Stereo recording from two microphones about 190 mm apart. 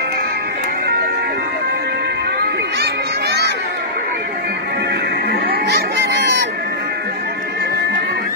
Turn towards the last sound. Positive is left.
turn(degrees=-65)  # may be behind; listen again after turning